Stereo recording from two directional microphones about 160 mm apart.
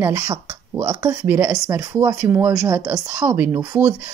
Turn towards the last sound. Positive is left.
turn(degrees=-15)  # may be behind; listen again after turning